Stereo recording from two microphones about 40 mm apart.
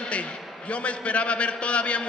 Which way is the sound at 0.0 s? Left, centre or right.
Left.